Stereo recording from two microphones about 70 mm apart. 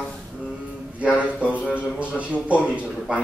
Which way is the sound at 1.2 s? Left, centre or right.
Centre.